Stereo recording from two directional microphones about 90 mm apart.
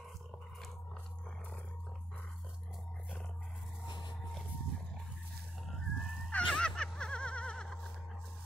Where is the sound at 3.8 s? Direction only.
55° left (ahead or behind).